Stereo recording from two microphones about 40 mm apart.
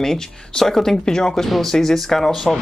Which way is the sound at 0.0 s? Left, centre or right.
Centre.